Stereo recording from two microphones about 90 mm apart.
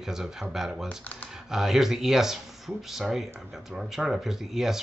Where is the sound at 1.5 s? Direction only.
5° right (ahead or behind).